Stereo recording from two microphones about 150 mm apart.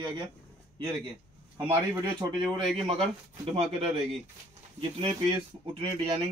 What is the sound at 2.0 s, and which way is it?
A man's voice, 30° right (ahead or behind).